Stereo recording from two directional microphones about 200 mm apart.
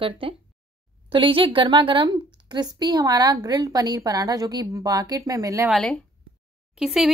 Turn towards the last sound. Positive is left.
turn(degrees=-5)  # may be behind; listen again after turning